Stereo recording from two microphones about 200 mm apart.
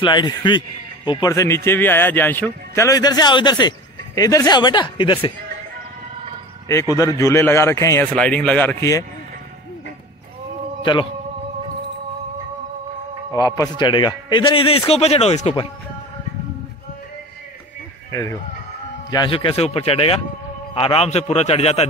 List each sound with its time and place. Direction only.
0.0 s a man's voice: 20° left (ahead or behind)
7.0 s a man's voice: 15° left (ahead or behind)
10.8 s a man's voice: 25° left (ahead or behind)
13.3 s a man's voice: 15° left (ahead or behind)
18.1 s a man's voice: 15° left (ahead or behind); by 21.8 s 30° left (ahead or behind)